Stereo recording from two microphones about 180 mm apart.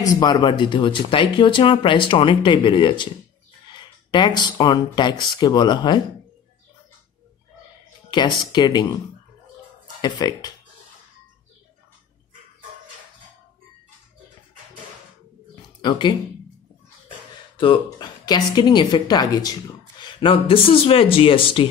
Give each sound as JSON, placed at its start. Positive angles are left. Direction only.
{"t": 0.0, "sound": "speech", "side_deg": 20}
{"t": 8.1, "sound": "speech", "side_deg": 25}
{"t": 10.0, "sound": "speech", "side_deg": 25}
{"t": 15.8, "sound": "speech", "side_deg": 25}
{"t": 17.6, "sound": "speech", "side_deg": 25}